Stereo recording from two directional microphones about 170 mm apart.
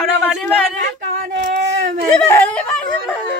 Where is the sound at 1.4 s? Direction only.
45° right (ahead or behind).